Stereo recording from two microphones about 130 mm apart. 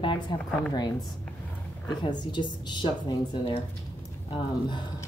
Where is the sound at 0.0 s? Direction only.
40° left (ahead or behind).